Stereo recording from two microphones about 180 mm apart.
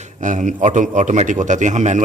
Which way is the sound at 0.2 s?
45° right (ahead or behind).